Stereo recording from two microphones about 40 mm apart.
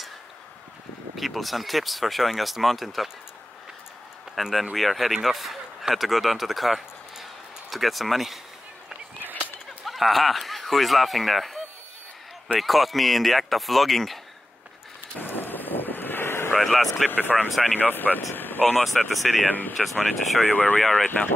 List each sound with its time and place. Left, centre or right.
1.1 s speech: centre
4.4 s speech: centre
9.8 s speech: centre
15.1 s wind: left
16.5 s speech: centre
17.1 s speech: left
18.8 s speech: centre
20.5 s speech: left